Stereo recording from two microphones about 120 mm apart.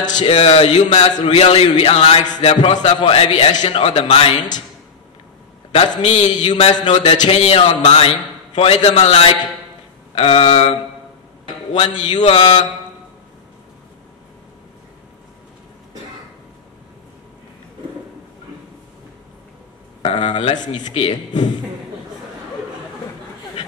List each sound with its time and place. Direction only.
0.0 s speech: 90° left
0.3 s speech: 55° left (ahead or behind)
5.9 s music: 40° left (ahead or behind)
6.3 s speech: 40° left (ahead or behind)
11.7 s music: 40° left (ahead or behind)
12.2 s speech: 55° left (ahead or behind)
20.0 s speech: 45° left (ahead or behind)
20.9 s speech: 55° left (ahead or behind)